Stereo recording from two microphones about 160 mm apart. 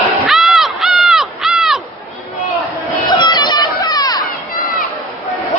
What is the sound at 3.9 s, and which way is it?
Crowd, 25° left (ahead or behind).